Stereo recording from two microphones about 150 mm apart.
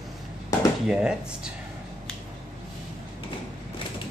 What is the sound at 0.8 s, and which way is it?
Speech, 5° right (ahead or behind).